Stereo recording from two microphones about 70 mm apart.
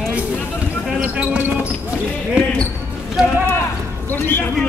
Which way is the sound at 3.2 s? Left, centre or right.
Centre.